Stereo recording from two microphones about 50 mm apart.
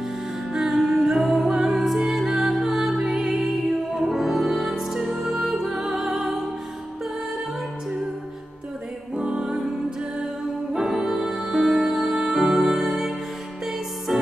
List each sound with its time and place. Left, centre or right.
0.5 s music: centre
9.1 s music: centre